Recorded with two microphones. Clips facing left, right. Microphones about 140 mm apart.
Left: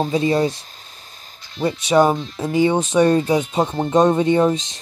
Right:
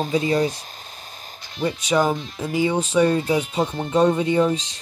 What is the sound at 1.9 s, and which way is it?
Speech, 25° left (ahead or behind).